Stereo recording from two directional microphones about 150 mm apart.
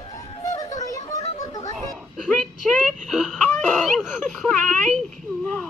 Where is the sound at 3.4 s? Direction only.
5° left (ahead or behind).